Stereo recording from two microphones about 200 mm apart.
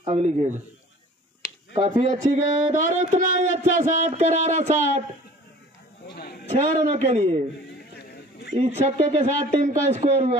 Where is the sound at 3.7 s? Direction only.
35° right (ahead or behind).